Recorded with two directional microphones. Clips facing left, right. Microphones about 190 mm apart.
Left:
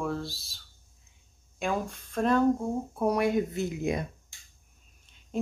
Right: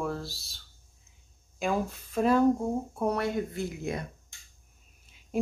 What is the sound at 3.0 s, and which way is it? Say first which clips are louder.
Speech: left 4 dB; 15° left (ahead or behind).